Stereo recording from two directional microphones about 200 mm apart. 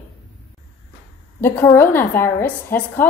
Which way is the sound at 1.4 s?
10° left (ahead or behind).